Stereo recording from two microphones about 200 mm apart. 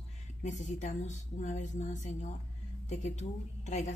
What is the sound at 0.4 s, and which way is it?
A woman's voice, 35° left (ahead or behind).